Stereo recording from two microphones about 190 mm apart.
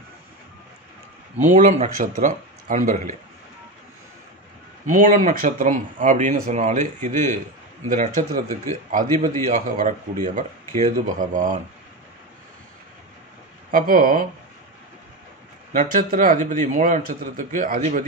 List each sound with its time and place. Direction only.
1.4 s speech: 40° right (ahead or behind)
4.8 s a man's voice: 40° right (ahead or behind)
13.7 s a man's voice: 50° right (ahead or behind)
15.7 s a man's voice: 45° right (ahead or behind)